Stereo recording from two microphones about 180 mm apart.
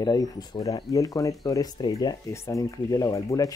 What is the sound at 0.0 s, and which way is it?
Speech, 25° left (ahead or behind).